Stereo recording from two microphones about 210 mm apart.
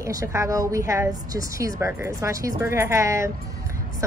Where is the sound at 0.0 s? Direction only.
15° right (ahead or behind).